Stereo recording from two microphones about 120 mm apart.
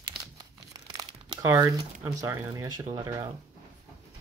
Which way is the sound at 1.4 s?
25° right (ahead or behind).